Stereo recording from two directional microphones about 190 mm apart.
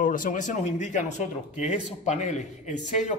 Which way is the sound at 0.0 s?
45° left (ahead or behind).